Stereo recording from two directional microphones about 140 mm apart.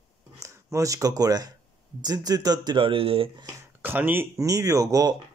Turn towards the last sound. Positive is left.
turn(degrees=-25)  # may be behind; listen again after turning